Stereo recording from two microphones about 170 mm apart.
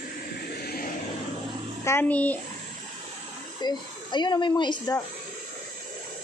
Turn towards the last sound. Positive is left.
turn(degrees=25)  # may be behind; listen again after turning